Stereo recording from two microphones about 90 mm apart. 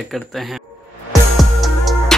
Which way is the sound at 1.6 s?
Centre (ahead or behind).